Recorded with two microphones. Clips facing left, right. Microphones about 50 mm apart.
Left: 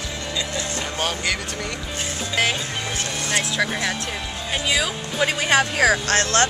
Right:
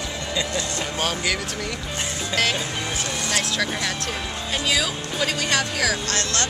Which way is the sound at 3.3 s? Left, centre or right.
Centre.